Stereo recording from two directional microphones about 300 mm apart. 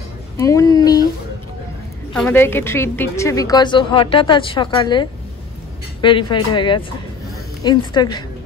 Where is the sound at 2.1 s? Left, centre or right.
Centre.